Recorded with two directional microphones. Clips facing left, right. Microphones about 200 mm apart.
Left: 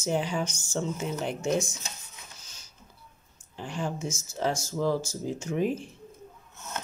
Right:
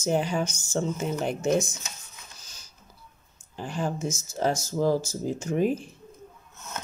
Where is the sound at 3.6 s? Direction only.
40° right (ahead or behind).